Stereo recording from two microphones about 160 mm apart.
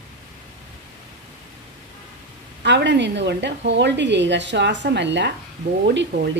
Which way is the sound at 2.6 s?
90° right.